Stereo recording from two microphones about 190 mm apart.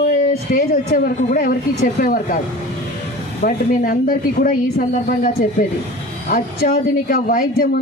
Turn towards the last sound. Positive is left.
turn(degrees=50)  # may be behind; listen again after turning